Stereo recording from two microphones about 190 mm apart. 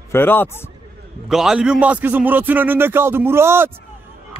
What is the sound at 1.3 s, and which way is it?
A man's voice, centre (ahead or behind).